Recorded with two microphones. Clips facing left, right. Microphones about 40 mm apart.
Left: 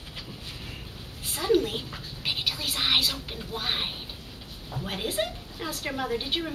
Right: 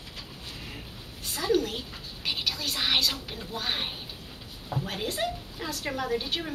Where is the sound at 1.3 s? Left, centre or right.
Centre.